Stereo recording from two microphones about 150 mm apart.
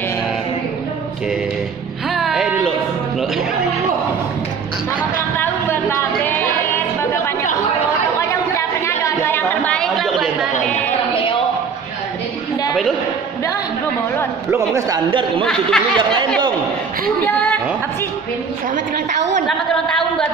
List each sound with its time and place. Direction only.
2.0 s music: centre (ahead or behind)
5.4 s a sound: 15° left (ahead or behind)
8.2 s chatter: 20° left (ahead or behind); by 10.3 s centre (ahead or behind)
15.0 s speech: 35° right (ahead or behind)
15.4 s speech: 5° left (ahead or behind)
16.0 s speech: 30° right (ahead or behind)
17.2 s a woman's voice: 5° left (ahead or behind)